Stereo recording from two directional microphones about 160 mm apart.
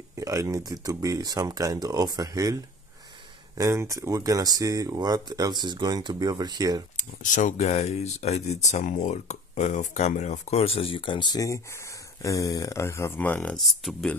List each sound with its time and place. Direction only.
0.1 s speech: 20° right (ahead or behind)
7.0 s speech: 50° left (ahead or behind); by 13.6 s 10° left (ahead or behind)
13.6 s speech: centre (ahead or behind)